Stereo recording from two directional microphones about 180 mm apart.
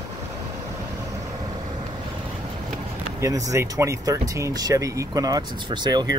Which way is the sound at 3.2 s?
20° right (ahead or behind).